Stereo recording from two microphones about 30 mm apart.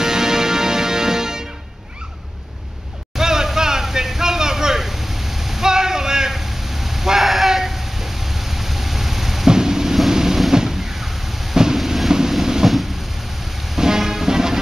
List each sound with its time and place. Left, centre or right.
0.0 s music: centre
3.2 s a sound: centre
5.7 s a sound: centre
9.5 s vehicle: centre
11.5 s vehicle: centre
11.8 s vehicle: centre
12.1 s train: centre
13.7 s music: centre